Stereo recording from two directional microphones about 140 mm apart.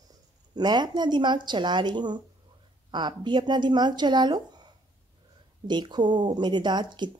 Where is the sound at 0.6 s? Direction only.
30° right (ahead or behind).